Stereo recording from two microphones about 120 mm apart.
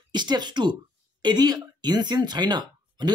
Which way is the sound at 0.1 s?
40° right (ahead or behind).